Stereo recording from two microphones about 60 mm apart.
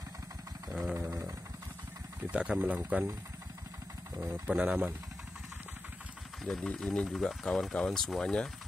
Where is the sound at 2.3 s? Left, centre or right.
Centre.